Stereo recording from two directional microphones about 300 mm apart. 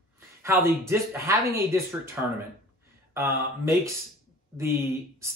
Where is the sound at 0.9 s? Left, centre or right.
Centre.